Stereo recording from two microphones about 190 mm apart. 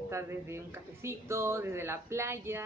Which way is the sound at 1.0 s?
15° right (ahead or behind).